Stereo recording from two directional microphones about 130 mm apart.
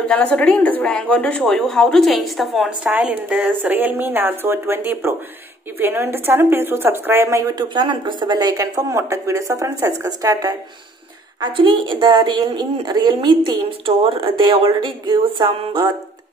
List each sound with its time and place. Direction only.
0.0 s a woman's voice: 10° left (ahead or behind); by 10.6 s 25° right (ahead or behind)
11.4 s speech: 40° right (ahead or behind)